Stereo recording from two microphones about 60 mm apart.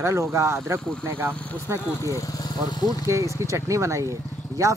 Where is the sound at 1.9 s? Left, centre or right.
Left.